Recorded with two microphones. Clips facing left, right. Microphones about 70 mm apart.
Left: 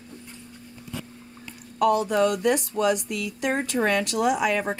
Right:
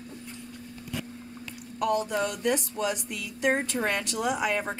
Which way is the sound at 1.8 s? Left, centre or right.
Left.